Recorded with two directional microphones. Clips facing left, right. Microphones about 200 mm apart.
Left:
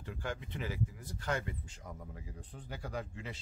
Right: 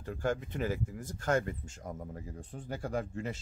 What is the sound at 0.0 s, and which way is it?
Speech, 45° right (ahead or behind).